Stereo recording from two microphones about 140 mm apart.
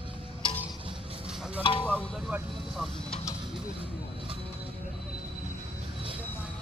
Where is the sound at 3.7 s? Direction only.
40° right (ahead or behind).